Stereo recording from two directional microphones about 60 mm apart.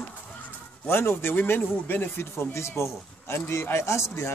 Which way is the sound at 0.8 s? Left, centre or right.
Left.